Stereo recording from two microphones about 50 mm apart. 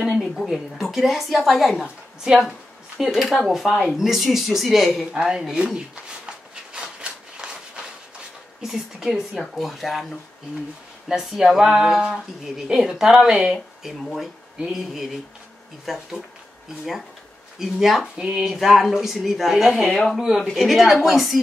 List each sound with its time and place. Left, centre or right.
0.0 s a woman's voice: centre
6.2 s a sound: centre
8.6 s a woman's voice: centre
11.1 s speech: centre
14.0 s a woman's voice: centre
17.6 s a woman's voice: centre
18.1 s a woman's voice: centre